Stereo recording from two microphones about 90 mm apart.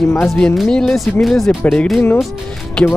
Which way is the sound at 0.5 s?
5° left (ahead or behind).